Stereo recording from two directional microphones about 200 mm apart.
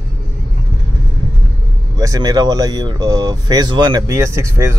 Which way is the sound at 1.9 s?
20° right (ahead or behind).